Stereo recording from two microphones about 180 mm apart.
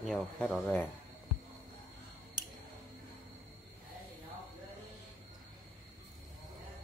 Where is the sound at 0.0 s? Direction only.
Centre (ahead or behind).